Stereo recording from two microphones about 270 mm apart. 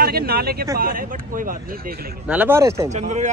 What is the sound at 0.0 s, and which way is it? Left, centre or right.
Speech, right.